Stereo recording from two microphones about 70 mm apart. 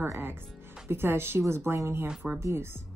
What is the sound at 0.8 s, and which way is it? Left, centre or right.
A woman's voice, right.